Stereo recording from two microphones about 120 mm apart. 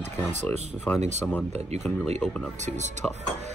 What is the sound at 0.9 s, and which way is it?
Speech, 15° left (ahead or behind).